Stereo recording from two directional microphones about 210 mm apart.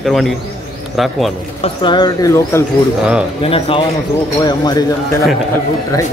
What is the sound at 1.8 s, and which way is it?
Speech, 20° left (ahead or behind).